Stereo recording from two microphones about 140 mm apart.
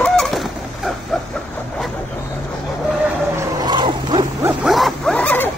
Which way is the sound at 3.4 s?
30° right (ahead or behind).